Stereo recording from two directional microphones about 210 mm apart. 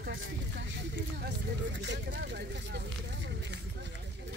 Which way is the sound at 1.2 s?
55° right (ahead or behind).